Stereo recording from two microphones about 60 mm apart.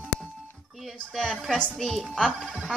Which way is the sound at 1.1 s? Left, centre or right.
Centre.